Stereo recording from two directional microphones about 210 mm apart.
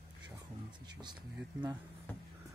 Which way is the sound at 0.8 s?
20° right (ahead or behind).